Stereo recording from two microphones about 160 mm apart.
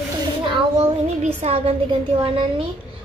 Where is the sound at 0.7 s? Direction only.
40° right (ahead or behind).